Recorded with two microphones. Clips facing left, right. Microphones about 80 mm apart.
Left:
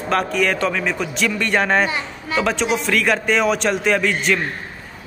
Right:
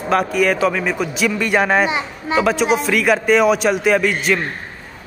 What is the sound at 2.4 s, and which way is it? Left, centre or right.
Speech, centre.